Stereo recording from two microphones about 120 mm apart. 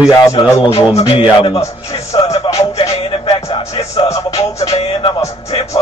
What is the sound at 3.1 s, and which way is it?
Music, 50° left (ahead or behind).